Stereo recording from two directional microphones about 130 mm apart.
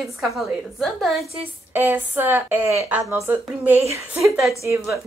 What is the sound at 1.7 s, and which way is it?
A woman's voice, 15° right (ahead or behind).